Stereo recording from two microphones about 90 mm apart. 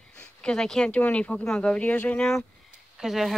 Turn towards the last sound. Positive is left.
turn(degrees=0)  # may be behind; listen again after turning